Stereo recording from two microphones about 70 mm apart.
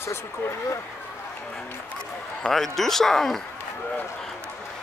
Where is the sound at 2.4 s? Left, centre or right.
Centre.